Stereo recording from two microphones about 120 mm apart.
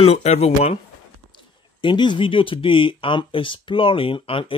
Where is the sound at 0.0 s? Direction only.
60° left (ahead or behind).